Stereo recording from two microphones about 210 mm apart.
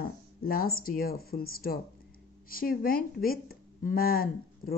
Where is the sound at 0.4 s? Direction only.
45° left (ahead or behind).